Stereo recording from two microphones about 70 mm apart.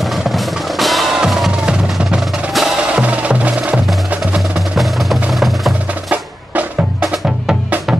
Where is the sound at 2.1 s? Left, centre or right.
Centre.